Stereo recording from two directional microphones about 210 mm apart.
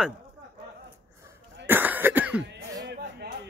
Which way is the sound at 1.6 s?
10° right (ahead or behind).